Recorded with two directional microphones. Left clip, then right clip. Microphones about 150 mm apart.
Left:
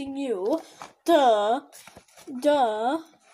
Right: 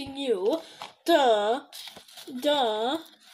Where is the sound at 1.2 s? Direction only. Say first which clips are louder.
Left 2 dB; 10° left (ahead or behind).